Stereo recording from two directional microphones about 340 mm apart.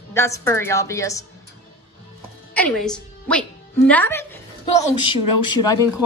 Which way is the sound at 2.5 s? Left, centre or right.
Centre.